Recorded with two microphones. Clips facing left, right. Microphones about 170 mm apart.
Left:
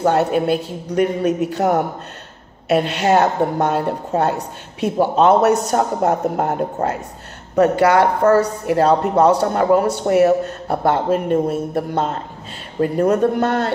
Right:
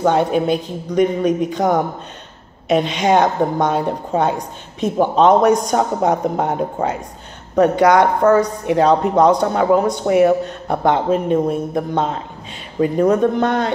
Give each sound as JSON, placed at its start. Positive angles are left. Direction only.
{"t": 0.1, "sound": "a woman's voice", "side_deg": 5}